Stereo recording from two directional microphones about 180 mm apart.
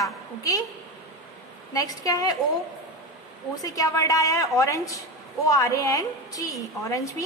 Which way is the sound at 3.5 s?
20° left (ahead or behind).